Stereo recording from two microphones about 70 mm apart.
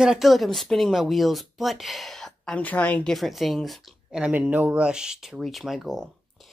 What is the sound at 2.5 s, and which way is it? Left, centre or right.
Speech, left.